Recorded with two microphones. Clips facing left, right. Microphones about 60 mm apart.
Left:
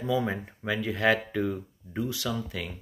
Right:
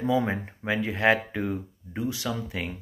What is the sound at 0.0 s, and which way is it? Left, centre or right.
Speech, right.